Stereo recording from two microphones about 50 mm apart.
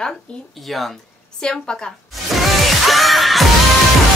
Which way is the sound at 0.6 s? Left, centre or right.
Centre.